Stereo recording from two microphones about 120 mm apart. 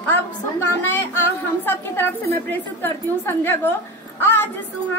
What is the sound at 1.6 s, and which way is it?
A woman's voice, 15° left (ahead or behind).